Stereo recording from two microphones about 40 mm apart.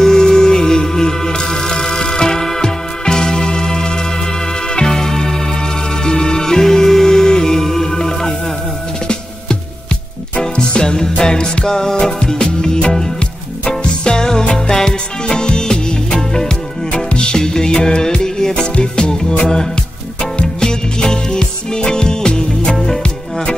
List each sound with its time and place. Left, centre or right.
0.0 s music: centre
16.9 s music: left